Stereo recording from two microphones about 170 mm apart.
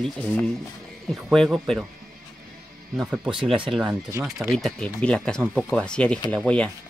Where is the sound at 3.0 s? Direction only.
5° right (ahead or behind).